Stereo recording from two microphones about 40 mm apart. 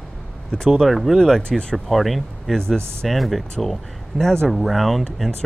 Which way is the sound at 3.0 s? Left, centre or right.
Centre.